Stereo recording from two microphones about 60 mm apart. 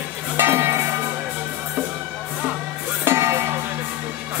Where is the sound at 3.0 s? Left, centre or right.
Right.